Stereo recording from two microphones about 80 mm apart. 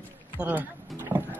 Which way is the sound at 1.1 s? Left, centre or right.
Right.